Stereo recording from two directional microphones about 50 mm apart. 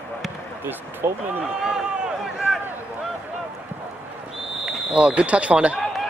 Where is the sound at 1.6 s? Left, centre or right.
Centre.